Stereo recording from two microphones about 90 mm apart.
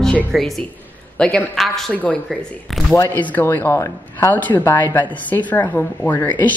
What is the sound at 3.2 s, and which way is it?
Speech, 20° left (ahead or behind).